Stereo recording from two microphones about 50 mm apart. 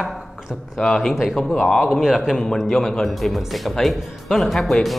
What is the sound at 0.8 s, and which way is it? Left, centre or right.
Speech, centre.